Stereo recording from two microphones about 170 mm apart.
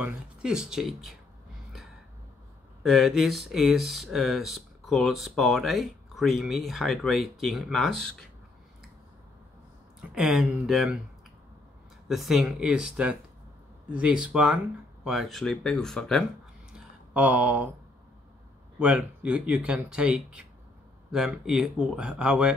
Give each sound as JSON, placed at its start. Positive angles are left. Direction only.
{"t": 0.0, "sound": "speech", "side_deg": -5}
{"t": 2.8, "sound": "speech", "side_deg": 0}
{"t": 10.1, "sound": "speech", "side_deg": -5}
{"t": 12.1, "sound": "speech", "side_deg": 0}
{"t": 16.7, "sound": "a sound", "side_deg": -5}
{"t": 18.8, "sound": "speech", "side_deg": -5}